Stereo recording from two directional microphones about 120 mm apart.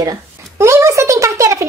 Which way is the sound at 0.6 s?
25° right (ahead or behind).